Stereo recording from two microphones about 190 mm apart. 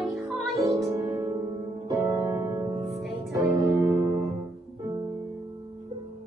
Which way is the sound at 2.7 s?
Centre (ahead or behind).